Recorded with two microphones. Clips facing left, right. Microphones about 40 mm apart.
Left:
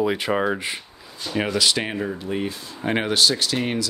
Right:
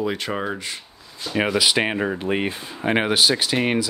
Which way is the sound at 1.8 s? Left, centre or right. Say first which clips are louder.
Right 4 dB; right.